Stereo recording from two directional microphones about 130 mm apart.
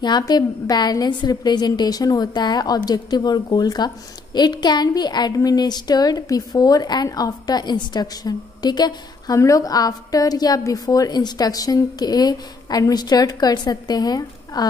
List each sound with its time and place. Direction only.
0.0 s a woman's voice: 35° left (ahead or behind)